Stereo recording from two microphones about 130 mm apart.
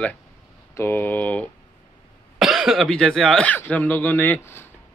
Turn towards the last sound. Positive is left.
turn(degrees=20)  # may be behind; listen again after turning